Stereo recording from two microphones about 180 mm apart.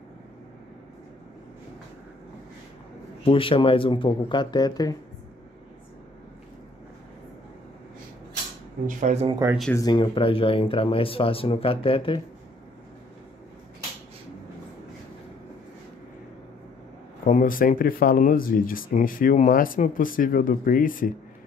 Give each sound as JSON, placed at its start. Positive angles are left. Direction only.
{"t": 3.3, "sound": "speech", "side_deg": 30}
{"t": 8.8, "sound": "speech", "side_deg": -40}
{"t": 9.3, "sound": "speech", "side_deg": -15}
{"t": 9.8, "sound": "speech", "side_deg": 25}
{"t": 17.2, "sound": "speech", "side_deg": 45}